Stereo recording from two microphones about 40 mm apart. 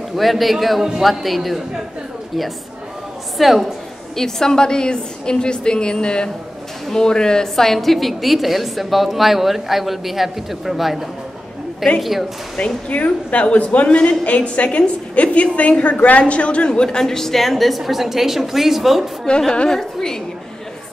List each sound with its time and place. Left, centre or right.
0.1 s a woman's voice: centre
3.3 s a woman's voice: centre
4.1 s a woman's voice: centre
12.5 s a woman's voice: left
17.0 s a woman's voice: centre
19.5 s a woman's voice: left